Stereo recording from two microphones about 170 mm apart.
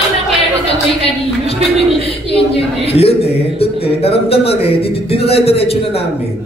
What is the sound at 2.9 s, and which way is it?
A man's voice, 35° left (ahead or behind).